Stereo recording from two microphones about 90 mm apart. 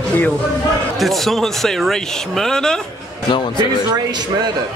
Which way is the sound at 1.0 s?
Centre (ahead or behind).